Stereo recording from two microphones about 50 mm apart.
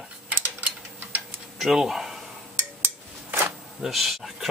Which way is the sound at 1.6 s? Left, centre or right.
Centre.